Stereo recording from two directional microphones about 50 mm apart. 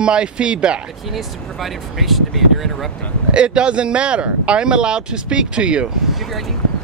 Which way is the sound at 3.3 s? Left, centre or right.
Right.